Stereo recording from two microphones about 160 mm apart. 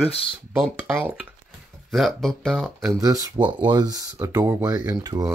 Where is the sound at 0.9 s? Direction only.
10° right (ahead or behind).